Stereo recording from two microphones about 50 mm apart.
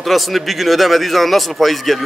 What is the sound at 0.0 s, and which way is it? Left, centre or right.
A man's voice, centre.